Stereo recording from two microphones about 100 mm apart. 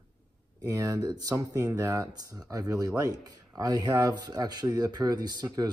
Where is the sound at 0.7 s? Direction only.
35° right (ahead or behind).